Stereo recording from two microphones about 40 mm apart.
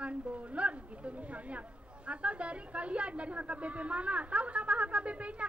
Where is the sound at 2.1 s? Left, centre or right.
Right.